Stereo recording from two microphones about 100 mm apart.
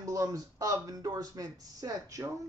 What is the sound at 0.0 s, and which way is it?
A man's voice, 35° right (ahead or behind).